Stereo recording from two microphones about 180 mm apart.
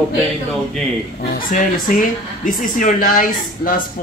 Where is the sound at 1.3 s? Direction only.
50° left (ahead or behind).